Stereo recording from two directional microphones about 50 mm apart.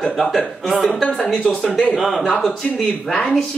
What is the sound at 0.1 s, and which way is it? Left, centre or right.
Speech, centre.